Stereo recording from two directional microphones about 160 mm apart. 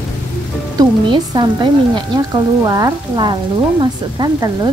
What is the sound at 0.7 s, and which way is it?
Speech, 25° right (ahead or behind).